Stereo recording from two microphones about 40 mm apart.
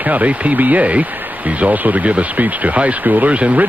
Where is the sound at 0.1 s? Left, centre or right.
Right.